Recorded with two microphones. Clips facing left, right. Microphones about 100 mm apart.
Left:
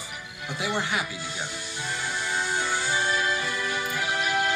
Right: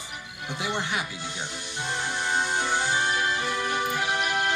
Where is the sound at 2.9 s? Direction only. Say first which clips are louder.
Even; 60° right (ahead or behind).